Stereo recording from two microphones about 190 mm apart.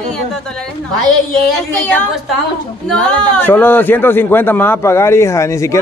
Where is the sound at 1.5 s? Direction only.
10° left (ahead or behind).